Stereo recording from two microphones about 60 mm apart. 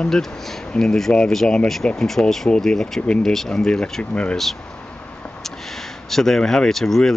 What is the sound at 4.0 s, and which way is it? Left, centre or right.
Speech, left.